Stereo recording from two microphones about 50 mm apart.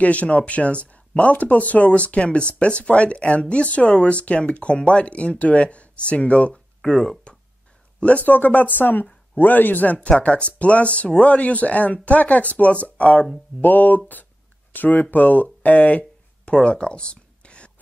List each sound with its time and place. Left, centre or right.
0.0 s speech: left
6.5 s a sound: centre
8.0 s speech: left
9.9 s speech: left
13.6 s speech: left